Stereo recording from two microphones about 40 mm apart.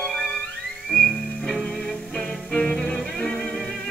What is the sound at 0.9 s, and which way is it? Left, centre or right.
Music, centre.